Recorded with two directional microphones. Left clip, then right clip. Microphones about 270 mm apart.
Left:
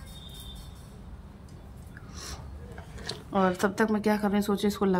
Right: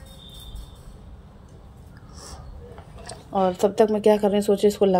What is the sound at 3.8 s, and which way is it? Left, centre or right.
Speech, centre.